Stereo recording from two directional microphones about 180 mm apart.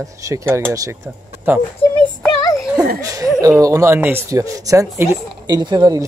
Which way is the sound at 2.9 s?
20° right (ahead or behind).